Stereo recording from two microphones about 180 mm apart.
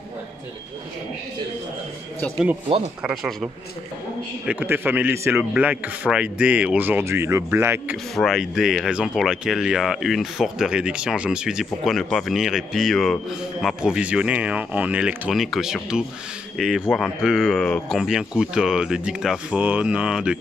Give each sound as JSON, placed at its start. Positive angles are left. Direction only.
{"t": 3.0, "sound": "speech", "side_deg": 0}
{"t": 4.5, "sound": "a man's voice", "side_deg": -10}
{"t": 8.2, "sound": "speech", "side_deg": 0}